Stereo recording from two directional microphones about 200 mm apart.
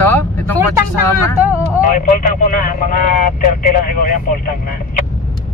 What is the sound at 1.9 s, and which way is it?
Speech, 45° left (ahead or behind).